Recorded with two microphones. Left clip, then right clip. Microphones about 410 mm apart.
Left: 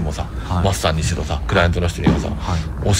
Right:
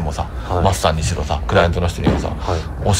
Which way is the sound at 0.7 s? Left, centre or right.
Centre.